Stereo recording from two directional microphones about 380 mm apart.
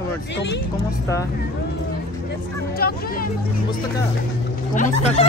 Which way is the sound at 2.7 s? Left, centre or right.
Left.